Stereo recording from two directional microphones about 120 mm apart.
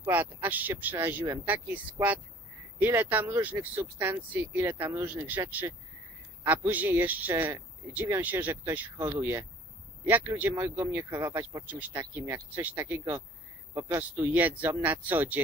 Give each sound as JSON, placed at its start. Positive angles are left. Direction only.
{"t": 0.0, "sound": "speech", "side_deg": -15}
{"t": 11.6, "sound": "speech", "side_deg": -15}